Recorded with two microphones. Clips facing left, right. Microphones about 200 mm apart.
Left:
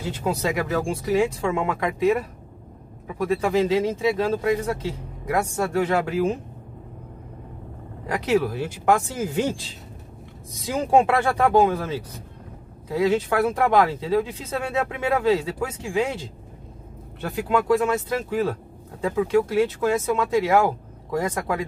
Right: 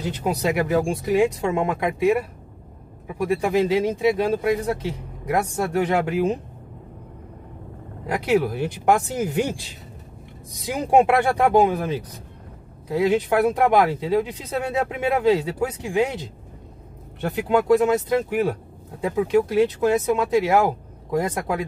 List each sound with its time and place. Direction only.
0.0 s speech: 15° right (ahead or behind)
8.1 s speech: 15° right (ahead or behind)